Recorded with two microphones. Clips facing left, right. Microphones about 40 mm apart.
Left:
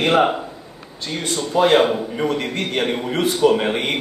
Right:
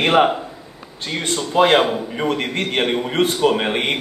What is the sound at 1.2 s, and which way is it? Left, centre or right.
A man's voice, right.